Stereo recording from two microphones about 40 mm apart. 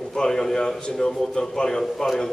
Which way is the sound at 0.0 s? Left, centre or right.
Centre.